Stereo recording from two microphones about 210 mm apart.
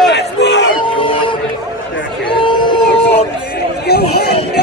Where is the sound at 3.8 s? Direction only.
50° left (ahead or behind).